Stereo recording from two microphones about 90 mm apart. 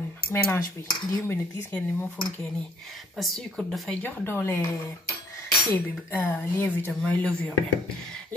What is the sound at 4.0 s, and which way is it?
Speech, 20° left (ahead or behind).